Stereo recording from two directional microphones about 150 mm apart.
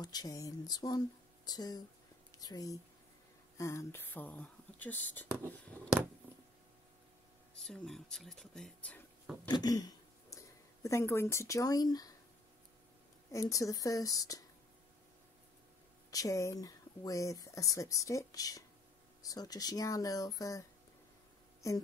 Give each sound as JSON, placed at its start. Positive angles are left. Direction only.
{"t": 0.0, "sound": "speech", "side_deg": 25}
{"t": 7.5, "sound": "speech", "side_deg": 5}
{"t": 9.5, "sound": "speech", "side_deg": 25}
{"t": 13.3, "sound": "speech", "side_deg": 20}
{"t": 16.1, "sound": "speech", "side_deg": 20}